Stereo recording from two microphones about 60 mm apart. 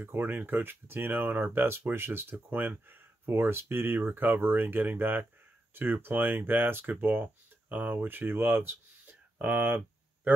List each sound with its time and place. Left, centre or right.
0.0 s speech: right